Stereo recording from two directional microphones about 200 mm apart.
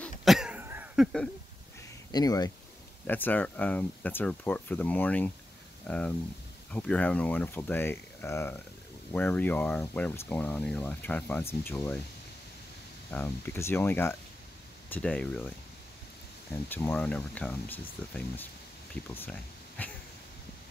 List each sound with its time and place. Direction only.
0.0 s cough: centre (ahead or behind)
2.1 s speech: 20° left (ahead or behind)
3.1 s speech: 10° left (ahead or behind)
13.1 s speech: 10° left (ahead or behind)
16.6 s speech: 10° left (ahead or behind)
19.8 s a sound: 10° left (ahead or behind)